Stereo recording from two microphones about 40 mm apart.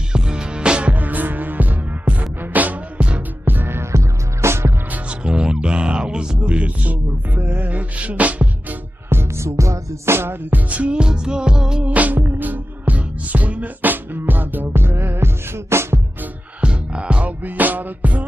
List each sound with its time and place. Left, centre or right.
0.1 s music: right
0.9 s music: right
3.4 s music: right
4.5 s music: right
5.2 s music: right
9.1 s music: right
10.5 s music: right; by 11.8 s centre
11.8 s music: right
14.1 s music: right
16.6 s music: right
17.4 s music: right